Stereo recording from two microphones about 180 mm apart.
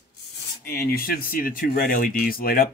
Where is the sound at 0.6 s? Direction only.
60° left (ahead or behind).